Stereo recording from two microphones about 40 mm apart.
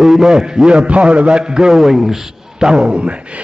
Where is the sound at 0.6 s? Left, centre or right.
Right.